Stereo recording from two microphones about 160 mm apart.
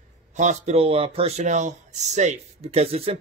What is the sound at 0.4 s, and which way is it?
Speech, 45° right (ahead or behind).